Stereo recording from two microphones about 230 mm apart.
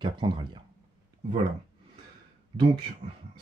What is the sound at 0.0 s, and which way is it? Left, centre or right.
Speech, right.